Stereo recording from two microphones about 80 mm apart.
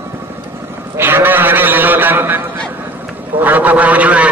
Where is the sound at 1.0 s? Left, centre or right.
Right.